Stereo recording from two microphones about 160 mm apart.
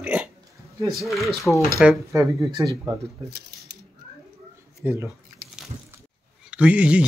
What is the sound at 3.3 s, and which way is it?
Speech, 90° right.